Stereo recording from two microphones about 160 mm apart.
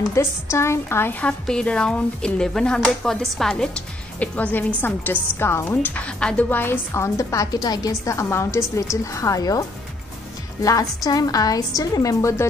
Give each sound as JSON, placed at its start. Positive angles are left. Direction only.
{"t": 0.1, "sound": "a woman's voice", "side_deg": 15}